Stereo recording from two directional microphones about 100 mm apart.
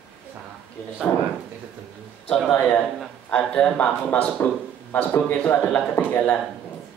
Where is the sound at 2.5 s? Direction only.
15° left (ahead or behind).